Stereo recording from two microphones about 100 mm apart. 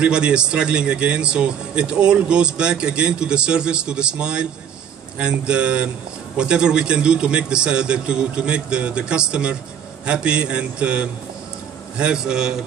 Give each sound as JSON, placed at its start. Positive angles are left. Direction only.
{"t": 0.0, "sound": "speech", "side_deg": -10}